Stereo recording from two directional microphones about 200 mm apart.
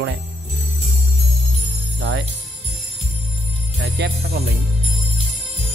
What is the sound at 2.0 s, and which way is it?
Music, 60° right (ahead or behind).